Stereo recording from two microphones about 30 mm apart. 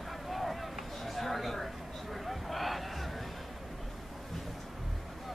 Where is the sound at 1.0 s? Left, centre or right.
Centre.